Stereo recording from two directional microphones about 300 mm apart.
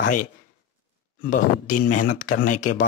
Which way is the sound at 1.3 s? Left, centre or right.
Left.